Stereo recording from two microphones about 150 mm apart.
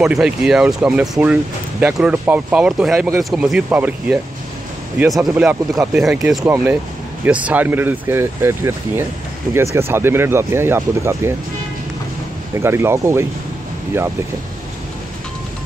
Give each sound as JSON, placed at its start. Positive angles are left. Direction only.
{"t": 0.0, "sound": "speech", "side_deg": -5}
{"t": 6.4, "sound": "speech", "side_deg": -15}
{"t": 12.6, "sound": "speech", "side_deg": -15}